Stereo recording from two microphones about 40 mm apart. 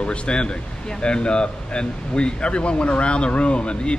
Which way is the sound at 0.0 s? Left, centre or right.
Left.